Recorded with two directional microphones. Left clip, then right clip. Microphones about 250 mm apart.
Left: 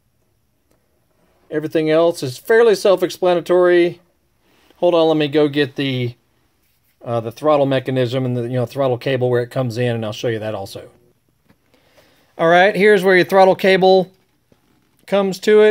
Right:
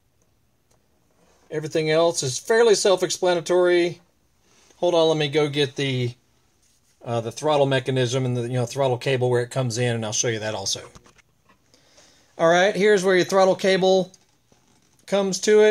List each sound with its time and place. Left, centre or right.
1.5 s speech: left
12.4 s speech: left
15.0 s speech: left